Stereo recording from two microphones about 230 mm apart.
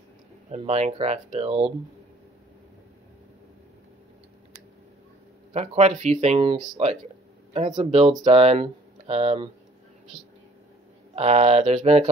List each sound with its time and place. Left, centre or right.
0.5 s speech: right
5.5 s speech: right
11.1 s speech: right